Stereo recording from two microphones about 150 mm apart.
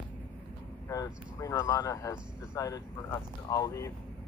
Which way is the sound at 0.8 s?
25° left (ahead or behind).